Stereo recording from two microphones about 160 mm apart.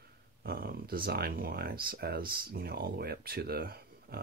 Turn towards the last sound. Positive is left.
turn(degrees=-70)  # may be behind; listen again after turning